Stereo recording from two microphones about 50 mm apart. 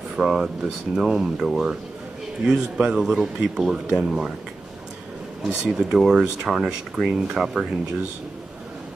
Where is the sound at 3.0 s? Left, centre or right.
Centre.